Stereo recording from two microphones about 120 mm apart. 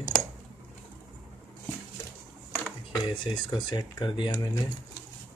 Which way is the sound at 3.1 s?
40° left (ahead or behind).